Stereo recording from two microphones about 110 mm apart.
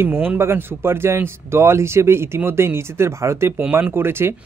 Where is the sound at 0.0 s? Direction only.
20° right (ahead or behind).